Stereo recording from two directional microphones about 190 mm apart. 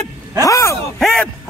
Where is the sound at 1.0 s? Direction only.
Centre (ahead or behind).